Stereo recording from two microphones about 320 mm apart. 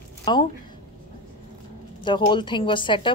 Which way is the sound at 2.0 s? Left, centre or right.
Centre.